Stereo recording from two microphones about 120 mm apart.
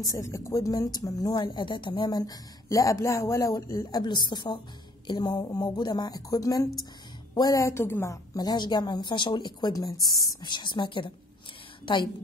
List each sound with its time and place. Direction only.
0.0 s a woman's voice: 25° left (ahead or behind)